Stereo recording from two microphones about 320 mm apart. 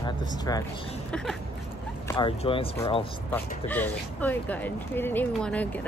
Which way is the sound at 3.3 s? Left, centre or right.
Centre.